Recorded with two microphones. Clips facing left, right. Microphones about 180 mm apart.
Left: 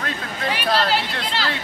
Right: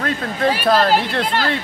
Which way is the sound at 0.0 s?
45° right (ahead or behind).